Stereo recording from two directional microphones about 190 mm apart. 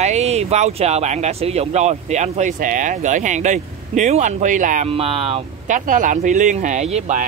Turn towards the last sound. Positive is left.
turn(degrees=-35)  # may be behind; listen again after turning